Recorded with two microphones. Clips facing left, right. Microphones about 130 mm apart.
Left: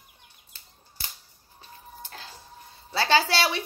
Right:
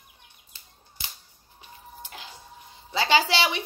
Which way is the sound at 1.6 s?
15° right (ahead or behind).